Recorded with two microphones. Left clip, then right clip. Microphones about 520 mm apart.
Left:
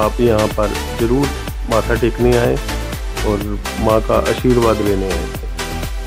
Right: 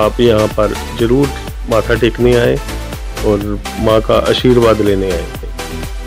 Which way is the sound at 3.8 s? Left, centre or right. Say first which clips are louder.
Right 3 dB; centre.